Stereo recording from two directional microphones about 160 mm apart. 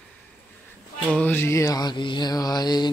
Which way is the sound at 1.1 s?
10° left (ahead or behind).